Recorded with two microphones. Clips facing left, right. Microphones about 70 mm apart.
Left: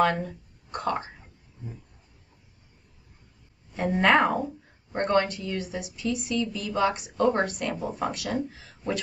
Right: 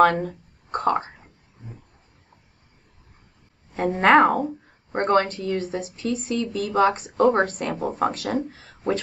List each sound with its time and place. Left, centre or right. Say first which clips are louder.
0.0 s speech: right 6 dB; right
3.7 s a woman's voice: right 5 dB; right